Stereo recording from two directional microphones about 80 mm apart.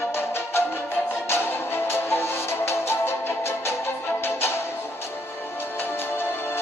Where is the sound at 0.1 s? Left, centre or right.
Left.